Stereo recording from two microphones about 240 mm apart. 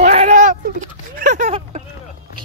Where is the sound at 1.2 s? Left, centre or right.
Right.